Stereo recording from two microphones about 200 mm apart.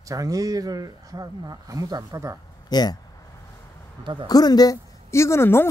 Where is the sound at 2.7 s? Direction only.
20° left (ahead or behind).